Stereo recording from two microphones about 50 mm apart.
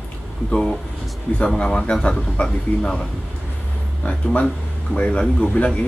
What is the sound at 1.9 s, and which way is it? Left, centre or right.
Speech, centre.